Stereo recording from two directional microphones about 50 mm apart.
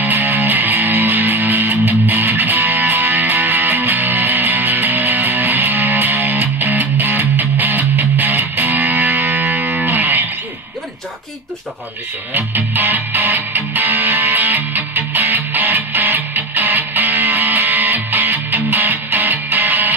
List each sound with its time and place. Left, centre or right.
0.0 s music: right
12.4 s music: right